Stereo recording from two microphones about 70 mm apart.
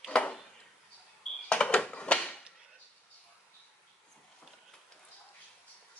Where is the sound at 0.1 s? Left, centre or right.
Centre.